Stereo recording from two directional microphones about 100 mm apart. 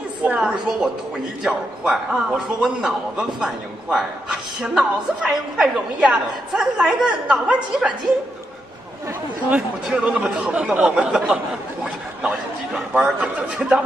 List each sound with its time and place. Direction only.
0.2 s a woman's voice: 15° right (ahead or behind)
9.5 s a woman's voice: 10° right (ahead or behind)